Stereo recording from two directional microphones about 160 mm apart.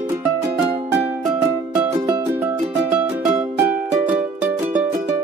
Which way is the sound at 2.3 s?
10° right (ahead or behind).